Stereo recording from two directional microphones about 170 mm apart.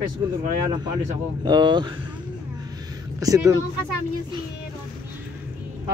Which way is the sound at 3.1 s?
20° right (ahead or behind).